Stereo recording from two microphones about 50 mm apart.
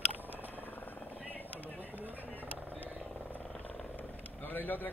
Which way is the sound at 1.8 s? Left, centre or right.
Right.